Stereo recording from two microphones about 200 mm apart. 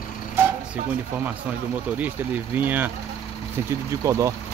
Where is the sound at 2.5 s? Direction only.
10° right (ahead or behind).